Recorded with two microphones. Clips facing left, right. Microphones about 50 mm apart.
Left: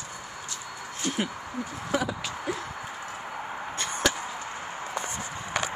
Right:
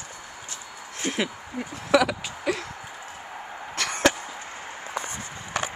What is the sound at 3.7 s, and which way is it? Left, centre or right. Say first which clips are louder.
Arrow: right 5 dB; right.